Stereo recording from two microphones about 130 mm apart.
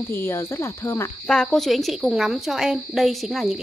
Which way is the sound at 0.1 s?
20° left (ahead or behind).